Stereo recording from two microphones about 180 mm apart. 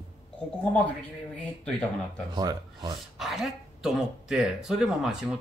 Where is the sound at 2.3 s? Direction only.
25° right (ahead or behind).